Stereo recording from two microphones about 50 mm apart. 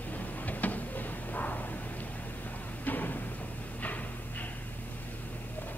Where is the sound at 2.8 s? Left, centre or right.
Left.